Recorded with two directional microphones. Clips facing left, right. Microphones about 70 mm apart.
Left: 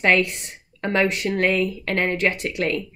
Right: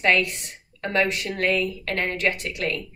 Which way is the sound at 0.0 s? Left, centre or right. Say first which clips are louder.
Left 2 dB; left.